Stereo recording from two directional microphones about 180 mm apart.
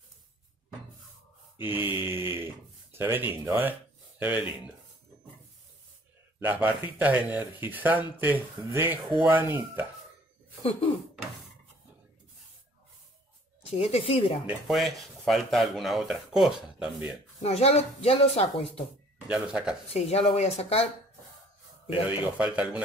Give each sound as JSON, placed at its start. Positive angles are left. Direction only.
{"t": 1.6, "sound": "speech", "side_deg": -10}
{"t": 6.4, "sound": "speech", "side_deg": -10}
{"t": 10.6, "sound": "cough", "side_deg": 30}
{"t": 13.7, "sound": "speech", "side_deg": 35}
{"t": 14.7, "sound": "speech", "side_deg": 0}
{"t": 17.4, "sound": "speech", "side_deg": 35}
{"t": 19.2, "sound": "speech", "side_deg": -5}
{"t": 19.9, "sound": "speech", "side_deg": 35}
{"t": 22.4, "sound": "speech", "side_deg": -5}